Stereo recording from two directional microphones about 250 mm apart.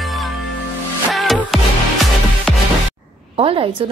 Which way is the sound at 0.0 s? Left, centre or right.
Centre.